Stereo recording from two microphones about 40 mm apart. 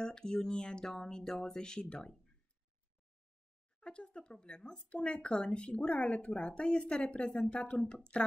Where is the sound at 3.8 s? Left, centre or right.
Left.